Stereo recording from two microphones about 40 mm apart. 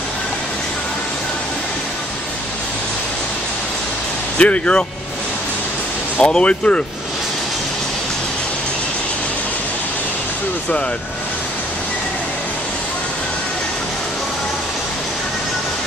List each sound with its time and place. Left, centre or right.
4.4 s speech: left
6.1 s speech: left